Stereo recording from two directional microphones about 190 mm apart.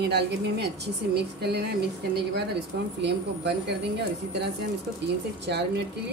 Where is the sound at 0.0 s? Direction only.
60° right (ahead or behind).